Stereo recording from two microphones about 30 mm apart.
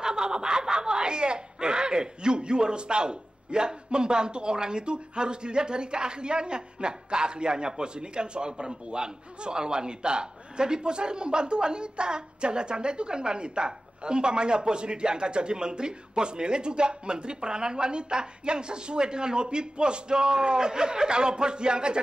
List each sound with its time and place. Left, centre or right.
0.0 s speech: right